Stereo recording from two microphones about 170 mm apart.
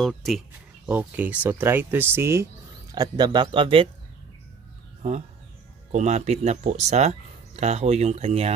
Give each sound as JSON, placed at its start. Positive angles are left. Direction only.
{"t": 0.0, "sound": "speech", "side_deg": 0}
{"t": 0.8, "sound": "a man's voice", "side_deg": -10}
{"t": 5.9, "sound": "speech", "side_deg": -40}